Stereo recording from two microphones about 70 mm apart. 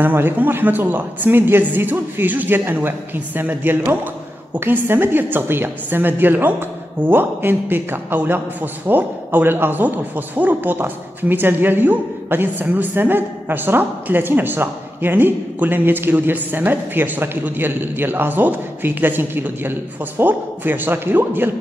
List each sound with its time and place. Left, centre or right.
0.0 s a man's voice: right